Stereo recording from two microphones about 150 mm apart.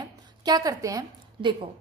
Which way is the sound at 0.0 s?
25° right (ahead or behind).